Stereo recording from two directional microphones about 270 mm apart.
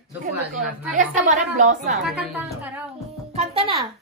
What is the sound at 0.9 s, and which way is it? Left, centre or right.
A child's voice, right.